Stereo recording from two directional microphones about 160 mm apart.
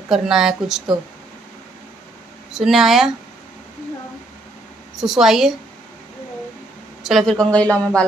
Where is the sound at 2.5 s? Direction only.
Centre (ahead or behind).